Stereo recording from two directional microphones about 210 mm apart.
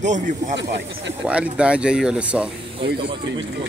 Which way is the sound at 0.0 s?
35° right (ahead or behind).